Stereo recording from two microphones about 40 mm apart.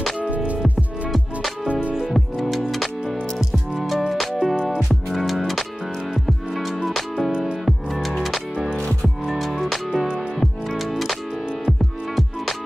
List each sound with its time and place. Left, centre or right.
0.2 s music: right
1.1 s music: centre
1.7 s music: right
2.1 s music: centre